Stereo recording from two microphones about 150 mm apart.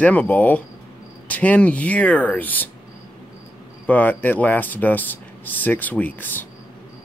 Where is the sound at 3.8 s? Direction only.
10° left (ahead or behind).